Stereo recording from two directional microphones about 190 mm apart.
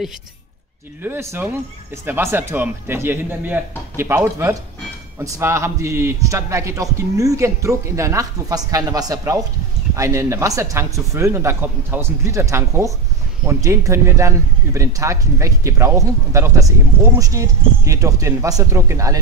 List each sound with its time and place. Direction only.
1.0 s a man's voice: 10° right (ahead or behind)